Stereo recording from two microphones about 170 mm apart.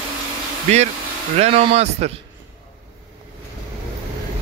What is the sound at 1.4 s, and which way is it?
Speech, 35° right (ahead or behind).